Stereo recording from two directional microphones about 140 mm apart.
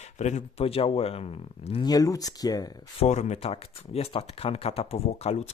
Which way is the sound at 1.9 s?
25° left (ahead or behind).